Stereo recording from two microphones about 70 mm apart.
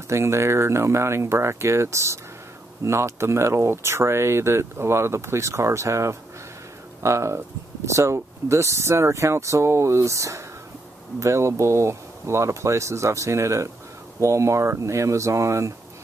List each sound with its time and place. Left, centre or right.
0.1 s speech: right